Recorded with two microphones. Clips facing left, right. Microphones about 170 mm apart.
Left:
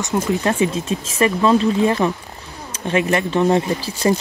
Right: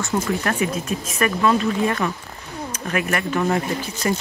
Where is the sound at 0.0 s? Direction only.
20° left (ahead or behind).